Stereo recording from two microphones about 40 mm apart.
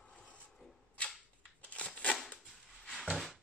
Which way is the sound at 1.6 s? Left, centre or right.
Left.